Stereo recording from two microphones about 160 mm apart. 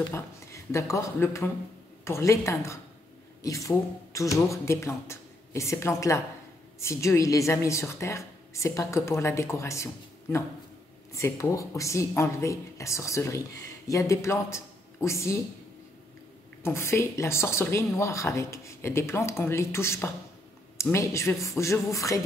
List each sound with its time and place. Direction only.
0.0 s a man's voice: 20° left (ahead or behind)
11.1 s speech: 20° left (ahead or behind)
16.6 s speech: 15° left (ahead or behind)